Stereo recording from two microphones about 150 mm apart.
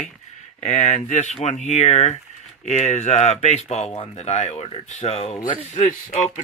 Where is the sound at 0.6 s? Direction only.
45° left (ahead or behind).